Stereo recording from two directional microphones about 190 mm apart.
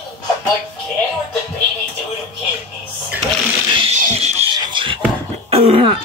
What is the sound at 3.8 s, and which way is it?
Music, 35° right (ahead or behind).